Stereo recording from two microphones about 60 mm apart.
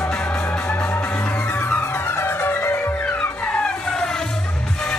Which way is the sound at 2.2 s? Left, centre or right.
Left.